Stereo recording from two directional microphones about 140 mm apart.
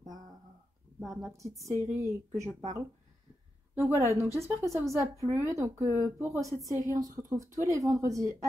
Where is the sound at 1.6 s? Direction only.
20° right (ahead or behind).